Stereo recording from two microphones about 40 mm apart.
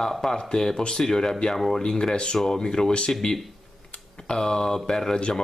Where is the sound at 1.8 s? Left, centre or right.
Centre.